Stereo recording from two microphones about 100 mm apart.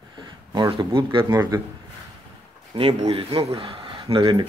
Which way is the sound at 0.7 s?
60° right (ahead or behind).